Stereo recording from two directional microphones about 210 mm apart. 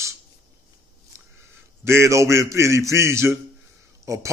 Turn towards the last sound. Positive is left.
turn(degrees=-15)  # may be behind; listen again after turning